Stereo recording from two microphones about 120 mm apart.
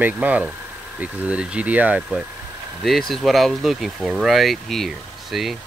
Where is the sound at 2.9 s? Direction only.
Centre (ahead or behind).